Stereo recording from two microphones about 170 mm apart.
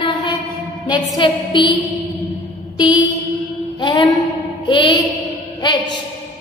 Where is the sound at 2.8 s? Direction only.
25° left (ahead or behind).